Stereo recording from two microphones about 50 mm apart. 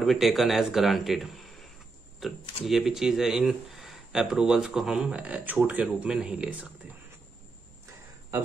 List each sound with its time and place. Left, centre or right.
0.0 s speech: centre; by 6.0 s right
6.0 s speech: centre